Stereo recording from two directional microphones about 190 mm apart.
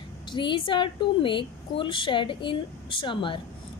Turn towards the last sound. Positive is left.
turn(degrees=25)  # may be behind; listen again after turning